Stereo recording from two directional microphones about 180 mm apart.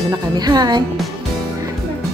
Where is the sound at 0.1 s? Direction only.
20° right (ahead or behind).